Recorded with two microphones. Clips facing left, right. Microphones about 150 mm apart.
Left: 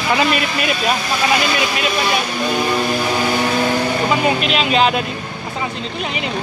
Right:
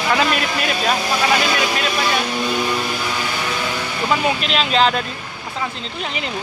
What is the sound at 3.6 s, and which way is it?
Vehicle, 40° left (ahead or behind).